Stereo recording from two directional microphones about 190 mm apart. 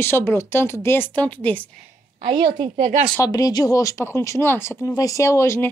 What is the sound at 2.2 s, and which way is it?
Speech, 25° right (ahead or behind).